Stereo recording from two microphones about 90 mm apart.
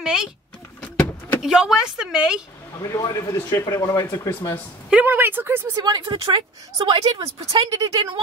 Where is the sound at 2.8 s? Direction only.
40° left (ahead or behind).